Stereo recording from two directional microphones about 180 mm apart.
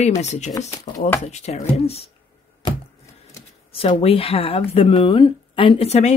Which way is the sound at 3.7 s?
30° left (ahead or behind).